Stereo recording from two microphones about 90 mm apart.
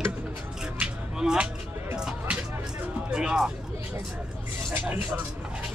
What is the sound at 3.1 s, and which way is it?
Music, 10° right (ahead or behind).